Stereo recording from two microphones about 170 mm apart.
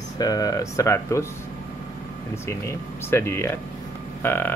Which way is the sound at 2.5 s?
15° left (ahead or behind).